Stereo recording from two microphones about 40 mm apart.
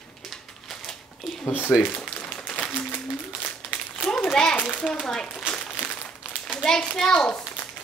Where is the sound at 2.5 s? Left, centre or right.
Left.